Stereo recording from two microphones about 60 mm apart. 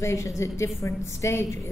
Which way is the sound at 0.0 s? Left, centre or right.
Left.